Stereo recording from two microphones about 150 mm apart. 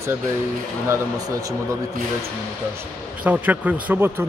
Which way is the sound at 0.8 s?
20° right (ahead or behind).